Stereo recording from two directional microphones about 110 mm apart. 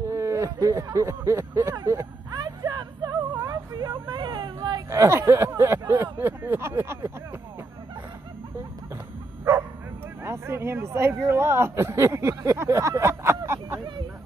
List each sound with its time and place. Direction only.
0.0 s speech: 25° right (ahead or behind)
2.3 s vehicle: 40° right (ahead or behind)
4.8 s speech: 25° right (ahead or behind)
10.2 s speech: 25° right (ahead or behind)